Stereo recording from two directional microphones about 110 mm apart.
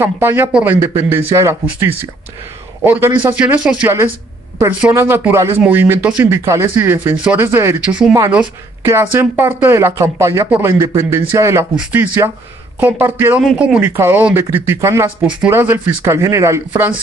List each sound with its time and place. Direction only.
0.0 s speech: 20° right (ahead or behind)
0.7 s speech: 20° right (ahead or behind)
4.9 s speech: 20° right (ahead or behind)
5.6 s speech: 15° right (ahead or behind)
6.2 s speech: 25° right (ahead or behind)
7.8 s speech: 10° right (ahead or behind)
8.8 s speech: 20° right (ahead or behind)
13.4 s speech: 5° right (ahead or behind)
13.9 s speech: 25° right (ahead or behind)